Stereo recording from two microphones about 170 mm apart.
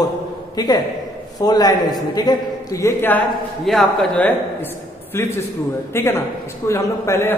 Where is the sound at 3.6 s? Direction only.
5° left (ahead or behind).